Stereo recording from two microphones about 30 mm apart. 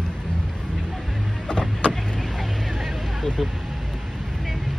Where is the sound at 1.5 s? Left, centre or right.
Left.